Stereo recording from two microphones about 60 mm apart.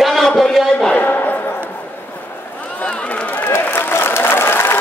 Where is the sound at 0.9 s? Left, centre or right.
Left.